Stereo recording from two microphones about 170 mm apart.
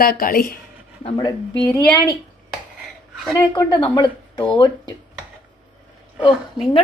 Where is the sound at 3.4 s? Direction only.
25° left (ahead or behind).